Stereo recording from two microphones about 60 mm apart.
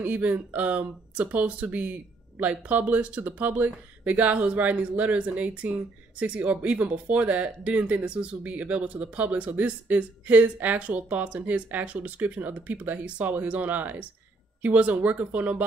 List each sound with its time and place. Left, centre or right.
0.0 s speech: right